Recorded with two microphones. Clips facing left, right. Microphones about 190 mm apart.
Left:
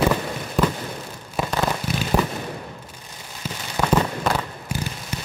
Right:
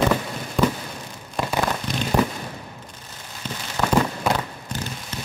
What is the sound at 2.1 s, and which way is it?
Fireworks, 5° left (ahead or behind).